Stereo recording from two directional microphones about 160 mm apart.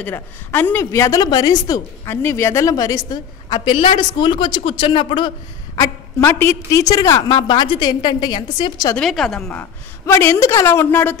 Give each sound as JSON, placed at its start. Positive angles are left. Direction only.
{"t": 0.0, "sound": "a woman's voice", "side_deg": 10}
{"t": 5.8, "sound": "a woman's voice", "side_deg": 15}
{"t": 8.9, "sound": "a woman's voice", "side_deg": 5}